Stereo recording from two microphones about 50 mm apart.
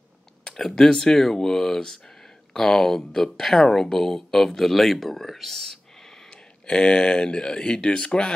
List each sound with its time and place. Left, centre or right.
0.4 s speech: centre